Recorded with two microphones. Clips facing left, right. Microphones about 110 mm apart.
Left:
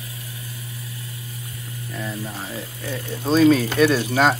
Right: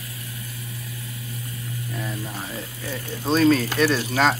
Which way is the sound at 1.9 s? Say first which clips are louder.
Left 3 dB; centre (ahead or behind).